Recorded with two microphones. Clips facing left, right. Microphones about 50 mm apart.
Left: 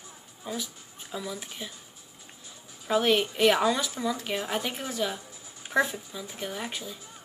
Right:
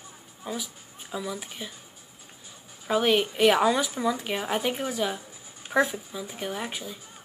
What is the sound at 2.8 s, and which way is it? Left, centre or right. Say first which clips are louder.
Speech: right 1 dB; centre.